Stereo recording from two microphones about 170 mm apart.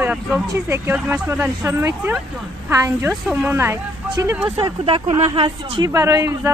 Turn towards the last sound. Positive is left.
turn(degrees=-20)  # may be behind; listen again after turning